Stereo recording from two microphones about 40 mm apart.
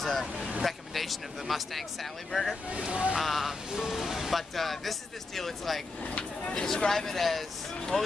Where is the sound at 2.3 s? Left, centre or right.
Centre.